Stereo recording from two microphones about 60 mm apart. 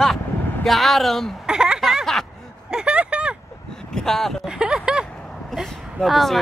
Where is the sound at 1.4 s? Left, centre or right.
Centre.